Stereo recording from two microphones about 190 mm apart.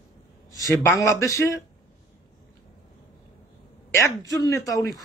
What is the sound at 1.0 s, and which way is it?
Speech, 15° left (ahead or behind).